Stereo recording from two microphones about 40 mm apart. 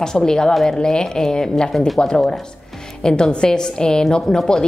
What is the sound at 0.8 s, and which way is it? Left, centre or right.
A woman's voice, centre.